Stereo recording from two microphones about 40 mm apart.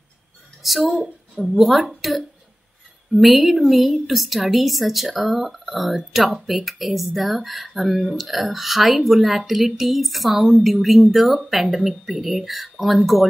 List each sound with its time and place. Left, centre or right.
0.6 s a woman's voice: centre